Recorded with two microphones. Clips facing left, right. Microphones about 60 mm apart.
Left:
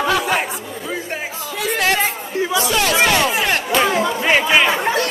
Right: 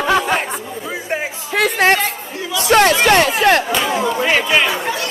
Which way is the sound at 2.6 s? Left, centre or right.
Right.